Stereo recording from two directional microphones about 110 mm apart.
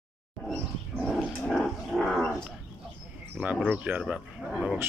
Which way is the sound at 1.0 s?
5° left (ahead or behind).